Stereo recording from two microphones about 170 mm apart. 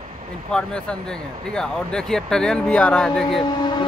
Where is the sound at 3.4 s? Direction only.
30° left (ahead or behind).